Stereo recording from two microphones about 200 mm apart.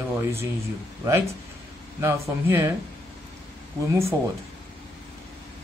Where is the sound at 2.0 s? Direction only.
15° right (ahead or behind).